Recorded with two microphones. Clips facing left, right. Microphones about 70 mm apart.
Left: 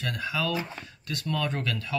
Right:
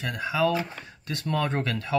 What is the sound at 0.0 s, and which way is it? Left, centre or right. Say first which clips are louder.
Speech: right 5 dB; centre.